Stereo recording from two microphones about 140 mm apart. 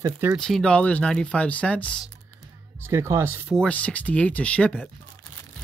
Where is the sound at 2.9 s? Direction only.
20° right (ahead or behind).